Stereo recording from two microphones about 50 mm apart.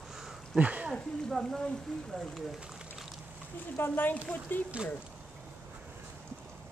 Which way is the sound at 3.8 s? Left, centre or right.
Left.